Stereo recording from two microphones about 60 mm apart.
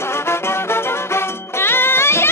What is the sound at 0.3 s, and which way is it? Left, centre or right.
Music, left.